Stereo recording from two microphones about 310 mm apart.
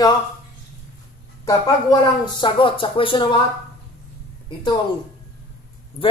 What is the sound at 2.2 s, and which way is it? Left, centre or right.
A man's voice, centre.